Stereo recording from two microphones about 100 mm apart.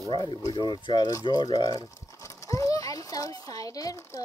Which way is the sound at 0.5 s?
50° left (ahead or behind).